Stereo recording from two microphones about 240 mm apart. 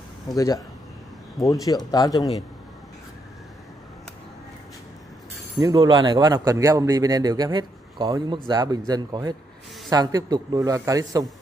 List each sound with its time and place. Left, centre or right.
0.3 s speech: centre
5.6 s a man's voice: centre